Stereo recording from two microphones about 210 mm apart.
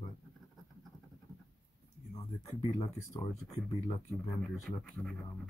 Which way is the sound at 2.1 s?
25° left (ahead or behind).